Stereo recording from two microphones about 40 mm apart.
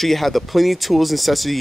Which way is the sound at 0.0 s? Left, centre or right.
Centre.